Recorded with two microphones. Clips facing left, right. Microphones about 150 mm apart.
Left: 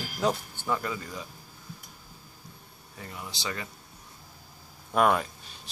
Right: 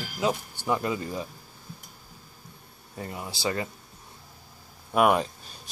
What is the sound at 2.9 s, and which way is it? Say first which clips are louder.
Speech: right 5 dB; 30° right (ahead or behind).